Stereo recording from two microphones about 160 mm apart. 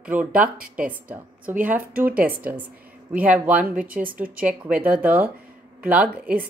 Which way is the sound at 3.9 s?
60° right (ahead or behind).